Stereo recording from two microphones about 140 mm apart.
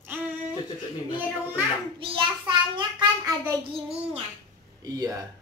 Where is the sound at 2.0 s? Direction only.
35° right (ahead or behind).